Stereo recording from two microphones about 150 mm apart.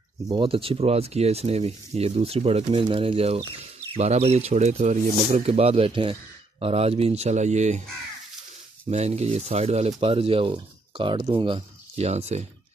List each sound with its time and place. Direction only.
0.3 s speech: 35° right (ahead or behind)
8.9 s speech: 45° right (ahead or behind)